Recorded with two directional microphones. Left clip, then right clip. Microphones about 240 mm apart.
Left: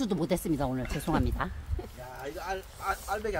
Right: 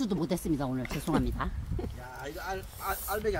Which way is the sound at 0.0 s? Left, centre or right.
Centre.